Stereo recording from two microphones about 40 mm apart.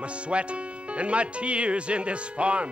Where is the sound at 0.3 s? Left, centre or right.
Right.